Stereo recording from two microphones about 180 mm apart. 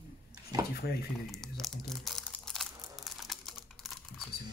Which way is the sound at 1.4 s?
Centre (ahead or behind).